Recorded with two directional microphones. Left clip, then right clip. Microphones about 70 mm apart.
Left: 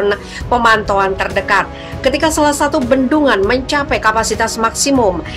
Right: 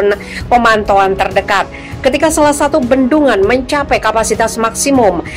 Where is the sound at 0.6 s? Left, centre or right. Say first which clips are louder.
Right 2 dB; right.